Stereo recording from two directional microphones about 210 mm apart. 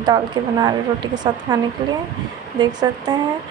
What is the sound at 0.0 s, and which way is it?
A woman's voice, 20° right (ahead or behind).